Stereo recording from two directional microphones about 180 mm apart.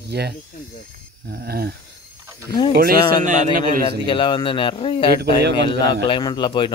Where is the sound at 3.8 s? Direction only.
25° left (ahead or behind).